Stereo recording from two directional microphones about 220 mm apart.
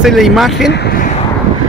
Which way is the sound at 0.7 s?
45° left (ahead or behind).